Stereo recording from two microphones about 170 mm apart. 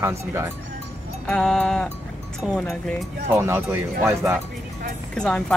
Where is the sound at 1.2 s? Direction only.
5° left (ahead or behind).